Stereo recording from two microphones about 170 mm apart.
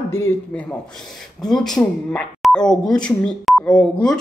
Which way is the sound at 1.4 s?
Centre (ahead or behind).